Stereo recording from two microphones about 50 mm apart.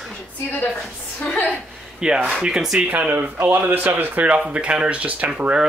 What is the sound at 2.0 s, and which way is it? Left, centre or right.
Speech, centre.